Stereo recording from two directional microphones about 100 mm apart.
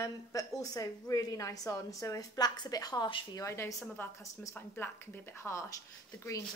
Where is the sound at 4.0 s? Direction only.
20° left (ahead or behind).